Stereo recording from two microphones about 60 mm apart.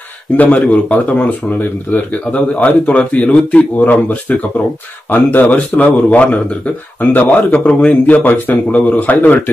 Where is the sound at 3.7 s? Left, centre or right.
Left.